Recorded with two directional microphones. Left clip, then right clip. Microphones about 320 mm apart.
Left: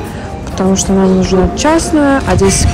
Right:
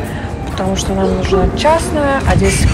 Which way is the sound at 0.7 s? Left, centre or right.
Left.